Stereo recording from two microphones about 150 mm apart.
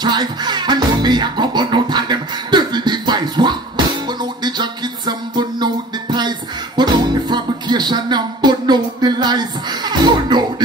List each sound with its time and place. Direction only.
0.0 s music: 30° right (ahead or behind)